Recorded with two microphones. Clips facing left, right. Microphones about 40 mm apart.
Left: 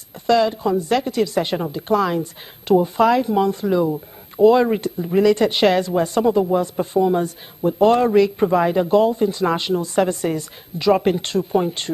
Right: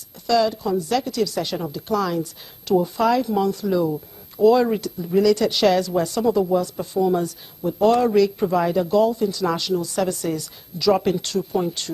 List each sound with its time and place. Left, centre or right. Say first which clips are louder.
0.3 s speech: left 3 dB; left